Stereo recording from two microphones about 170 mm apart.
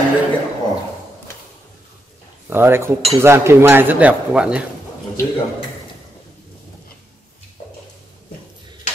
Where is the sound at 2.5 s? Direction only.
15° right (ahead or behind).